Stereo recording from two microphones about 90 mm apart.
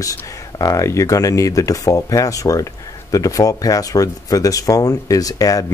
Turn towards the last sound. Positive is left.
turn(degrees=40)  # may be behind; listen again after turning